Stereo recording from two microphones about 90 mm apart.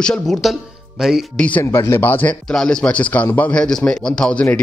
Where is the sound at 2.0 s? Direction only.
20° left (ahead or behind).